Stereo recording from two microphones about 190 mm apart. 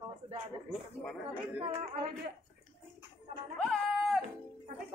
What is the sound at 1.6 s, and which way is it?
Speech, 30° right (ahead or behind).